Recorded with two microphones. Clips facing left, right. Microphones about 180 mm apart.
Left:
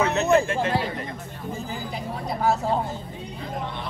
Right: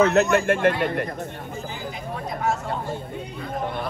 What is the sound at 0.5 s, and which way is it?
Speech, 60° right (ahead or behind).